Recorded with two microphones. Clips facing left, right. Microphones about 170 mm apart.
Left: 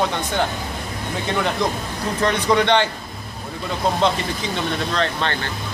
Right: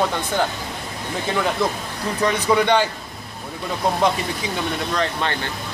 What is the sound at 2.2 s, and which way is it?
Speech, 5° right (ahead or behind).